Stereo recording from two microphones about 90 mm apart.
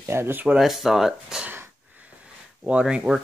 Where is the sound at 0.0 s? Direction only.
30° right (ahead or behind).